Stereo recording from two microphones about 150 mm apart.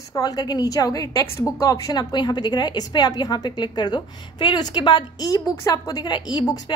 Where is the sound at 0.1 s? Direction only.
25° left (ahead or behind).